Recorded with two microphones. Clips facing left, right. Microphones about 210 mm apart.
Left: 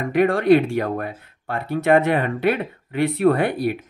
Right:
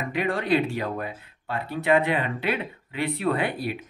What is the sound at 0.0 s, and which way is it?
Speech, 50° left (ahead or behind).